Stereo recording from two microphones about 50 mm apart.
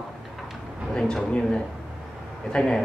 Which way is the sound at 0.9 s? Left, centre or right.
Centre.